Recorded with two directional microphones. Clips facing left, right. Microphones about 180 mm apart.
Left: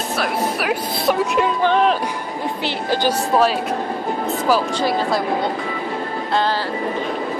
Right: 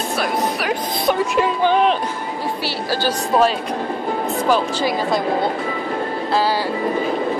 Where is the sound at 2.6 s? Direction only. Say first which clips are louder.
Left 4 dB; 20° left (ahead or behind).